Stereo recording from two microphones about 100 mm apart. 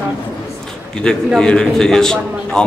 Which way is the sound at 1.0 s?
5° left (ahead or behind).